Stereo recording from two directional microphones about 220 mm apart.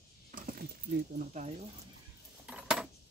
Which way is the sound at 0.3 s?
40° right (ahead or behind).